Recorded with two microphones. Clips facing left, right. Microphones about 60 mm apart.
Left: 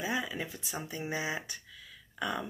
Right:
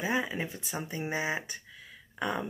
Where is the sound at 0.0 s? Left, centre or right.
Right.